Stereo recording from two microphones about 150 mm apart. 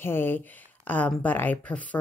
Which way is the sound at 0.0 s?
15° left (ahead or behind).